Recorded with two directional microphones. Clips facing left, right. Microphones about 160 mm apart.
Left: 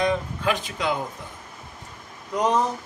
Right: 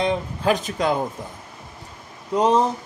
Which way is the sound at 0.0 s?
30° right (ahead or behind).